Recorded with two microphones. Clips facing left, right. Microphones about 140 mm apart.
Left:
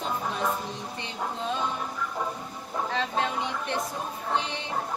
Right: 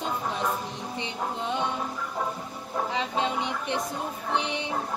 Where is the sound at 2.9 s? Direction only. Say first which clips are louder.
Even; 20° right (ahead or behind).